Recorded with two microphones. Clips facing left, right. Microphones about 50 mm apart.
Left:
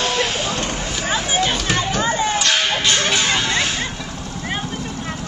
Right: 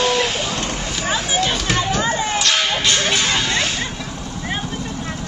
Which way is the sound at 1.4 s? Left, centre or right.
Centre.